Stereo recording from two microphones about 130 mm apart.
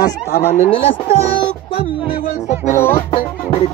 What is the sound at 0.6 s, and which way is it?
Speech, 45° left (ahead or behind).